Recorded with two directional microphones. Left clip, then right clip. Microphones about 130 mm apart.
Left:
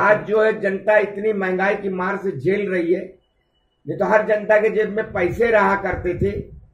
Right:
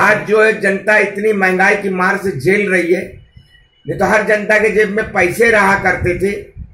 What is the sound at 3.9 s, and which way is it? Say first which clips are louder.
Speech: right 4 dB; 10° left (ahead or behind).